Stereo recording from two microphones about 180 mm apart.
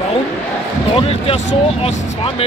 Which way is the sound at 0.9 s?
30° left (ahead or behind).